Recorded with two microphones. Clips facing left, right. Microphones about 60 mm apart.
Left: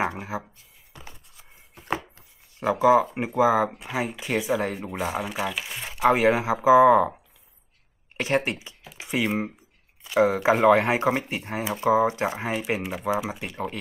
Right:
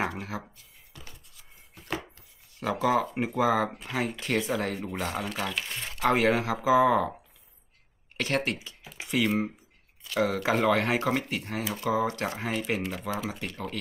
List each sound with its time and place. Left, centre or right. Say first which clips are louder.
0.0 s speech: left 4 dB; centre
0.9 s chopping: left 4 dB; left
2.6 s speech: left 7 dB; centre
8.2 s speech: left 4 dB; left